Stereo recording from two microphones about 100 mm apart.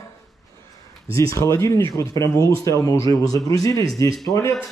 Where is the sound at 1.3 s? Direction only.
30° left (ahead or behind).